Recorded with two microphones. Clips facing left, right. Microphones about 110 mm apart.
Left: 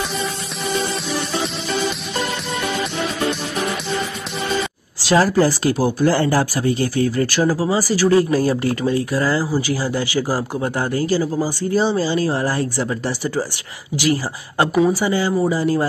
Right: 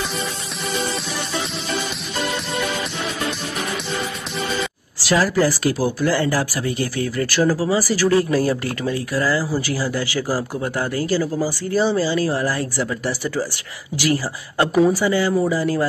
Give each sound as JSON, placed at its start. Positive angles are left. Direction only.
{"t": 5.0, "sound": "speech", "side_deg": 30}
{"t": 6.1, "sound": "speech", "side_deg": 35}
{"t": 7.3, "sound": "speech", "side_deg": 15}